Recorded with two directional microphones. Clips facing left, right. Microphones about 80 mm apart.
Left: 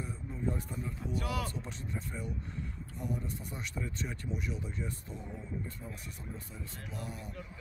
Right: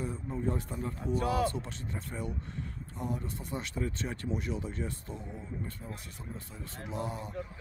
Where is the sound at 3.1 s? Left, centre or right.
Right.